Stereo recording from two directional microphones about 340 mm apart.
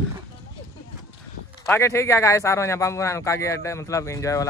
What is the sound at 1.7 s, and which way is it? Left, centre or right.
A man's voice, centre.